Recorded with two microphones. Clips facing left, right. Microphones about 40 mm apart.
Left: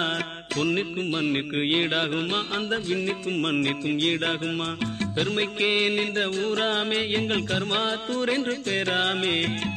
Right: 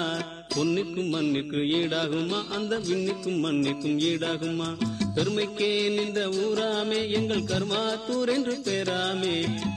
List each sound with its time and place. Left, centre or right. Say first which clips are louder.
0.6 s music: left 1 dB; left